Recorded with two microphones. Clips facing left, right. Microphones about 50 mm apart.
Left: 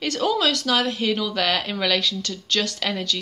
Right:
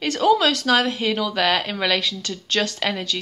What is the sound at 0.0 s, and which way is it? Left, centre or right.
Speech, right.